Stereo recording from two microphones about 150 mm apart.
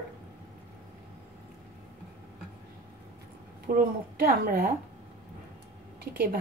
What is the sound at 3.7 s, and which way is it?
Speech, 70° right (ahead or behind).